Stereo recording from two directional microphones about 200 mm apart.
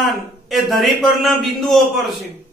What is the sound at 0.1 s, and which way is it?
A man's voice, centre (ahead or behind).